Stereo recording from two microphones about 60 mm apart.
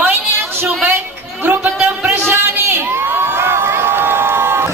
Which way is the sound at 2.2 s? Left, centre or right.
Right.